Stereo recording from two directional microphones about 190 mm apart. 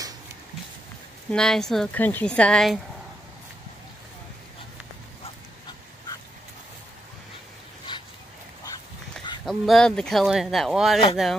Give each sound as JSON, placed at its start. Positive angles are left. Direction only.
{"t": 1.3, "sound": "speech", "side_deg": 5}
{"t": 7.9, "sound": "dog", "side_deg": 25}
{"t": 9.5, "sound": "speech", "side_deg": 0}